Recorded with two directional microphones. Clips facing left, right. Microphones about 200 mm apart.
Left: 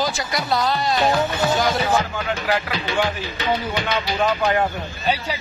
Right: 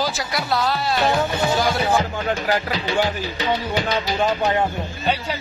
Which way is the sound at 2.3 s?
40° right (ahead or behind).